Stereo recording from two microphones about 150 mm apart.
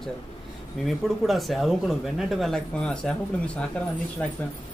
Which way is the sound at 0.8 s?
Centre (ahead or behind).